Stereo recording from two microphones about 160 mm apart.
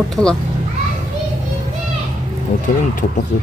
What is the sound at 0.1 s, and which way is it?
Speech, 5° left (ahead or behind).